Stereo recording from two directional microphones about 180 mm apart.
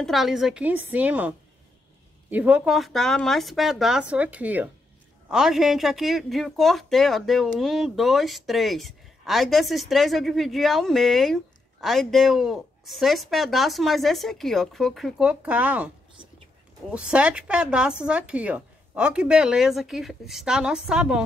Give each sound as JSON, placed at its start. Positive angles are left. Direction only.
{"t": 0.0, "sound": "speech", "side_deg": 0}